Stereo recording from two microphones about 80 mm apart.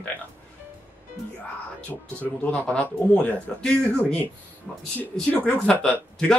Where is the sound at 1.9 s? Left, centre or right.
Centre.